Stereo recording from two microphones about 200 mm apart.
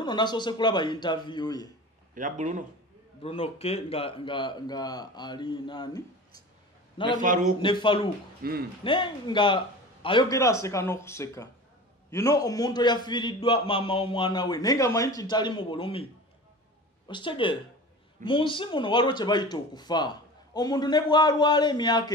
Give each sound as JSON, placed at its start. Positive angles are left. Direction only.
{"t": 0.0, "sound": "a man's voice", "side_deg": 20}
{"t": 2.1, "sound": "speech", "side_deg": -40}
{"t": 3.2, "sound": "a man's voice", "side_deg": 30}
{"t": 7.2, "sound": "speech", "side_deg": -40}
{"t": 7.6, "sound": "a man's voice", "side_deg": 25}
{"t": 8.4, "sound": "speech", "side_deg": -50}
{"t": 8.8, "sound": "a man's voice", "side_deg": 25}
{"t": 17.1, "sound": "a man's voice", "side_deg": 25}